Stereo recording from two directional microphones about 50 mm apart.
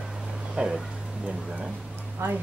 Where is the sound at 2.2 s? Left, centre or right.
Right.